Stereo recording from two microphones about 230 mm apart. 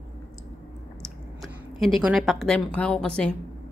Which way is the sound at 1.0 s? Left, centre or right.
Centre.